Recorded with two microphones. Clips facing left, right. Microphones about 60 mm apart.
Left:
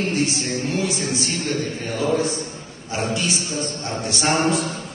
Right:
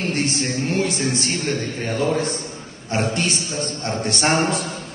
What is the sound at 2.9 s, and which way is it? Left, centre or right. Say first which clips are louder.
A man's voice: right 2 dB; right.